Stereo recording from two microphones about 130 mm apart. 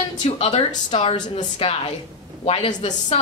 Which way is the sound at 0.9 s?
45° left (ahead or behind).